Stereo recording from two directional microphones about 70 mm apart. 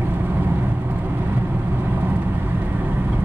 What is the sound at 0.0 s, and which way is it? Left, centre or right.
Vehicle, right.